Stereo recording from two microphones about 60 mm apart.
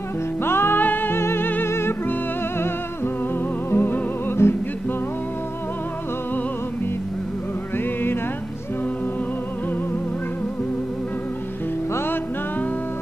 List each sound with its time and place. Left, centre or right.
0.4 s music: left
3.7 s music: left
7.7 s music: left